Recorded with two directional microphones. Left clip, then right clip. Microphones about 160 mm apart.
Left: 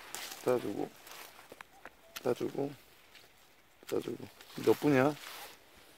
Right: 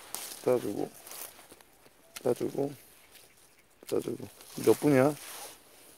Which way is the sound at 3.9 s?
40° right (ahead or behind).